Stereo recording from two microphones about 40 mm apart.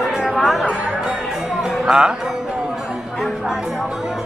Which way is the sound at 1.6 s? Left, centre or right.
Centre.